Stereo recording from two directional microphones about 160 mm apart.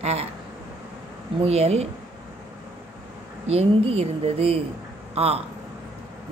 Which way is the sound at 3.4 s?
40° right (ahead or behind).